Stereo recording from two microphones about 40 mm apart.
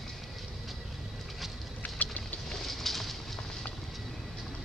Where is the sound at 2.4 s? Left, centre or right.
Centre.